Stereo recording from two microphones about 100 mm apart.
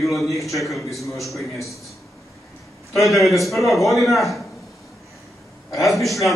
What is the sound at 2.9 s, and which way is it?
A man's voice, centre (ahead or behind).